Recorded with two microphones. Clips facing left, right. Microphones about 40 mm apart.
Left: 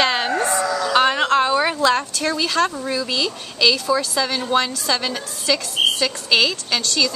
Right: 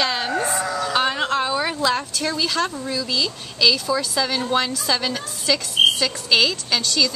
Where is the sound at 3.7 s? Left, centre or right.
Centre.